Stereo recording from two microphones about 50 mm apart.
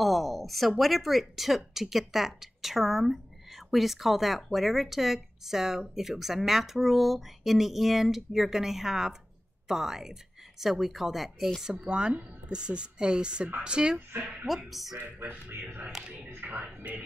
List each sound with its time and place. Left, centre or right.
0.0 s a woman's voice: centre
11.7 s speech: right
14.1 s speech: right
14.7 s a woman's voice: centre
15.0 s speech: right